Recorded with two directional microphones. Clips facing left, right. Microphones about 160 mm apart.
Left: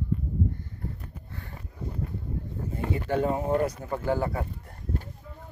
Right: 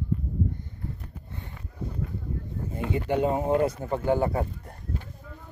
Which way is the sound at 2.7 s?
20° right (ahead or behind).